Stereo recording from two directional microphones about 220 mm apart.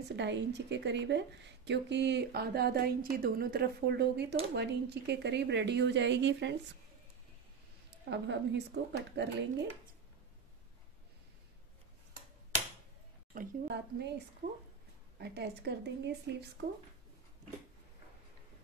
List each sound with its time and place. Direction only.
0.1 s a woman's voice: 50° right (ahead or behind)
8.1 s a woman's voice: 50° right (ahead or behind)
13.3 s a woman's voice: 45° right (ahead or behind)